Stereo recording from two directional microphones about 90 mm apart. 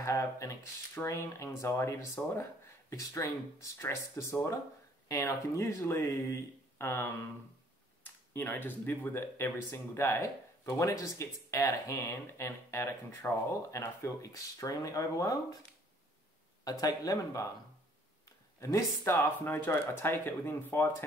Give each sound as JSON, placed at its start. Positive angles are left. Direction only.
{"t": 0.0, "sound": "speech", "side_deg": 35}
{"t": 8.4, "sound": "speech", "side_deg": 20}
{"t": 16.6, "sound": "speech", "side_deg": 45}
{"t": 18.6, "sound": "speech", "side_deg": 35}
{"t": 19.4, "sound": "speech", "side_deg": 25}